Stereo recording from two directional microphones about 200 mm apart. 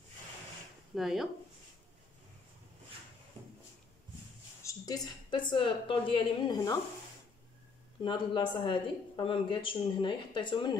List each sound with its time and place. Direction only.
0.9 s speech: centre (ahead or behind)
4.6 s speech: 20° left (ahead or behind)
8.0 s speech: 25° left (ahead or behind)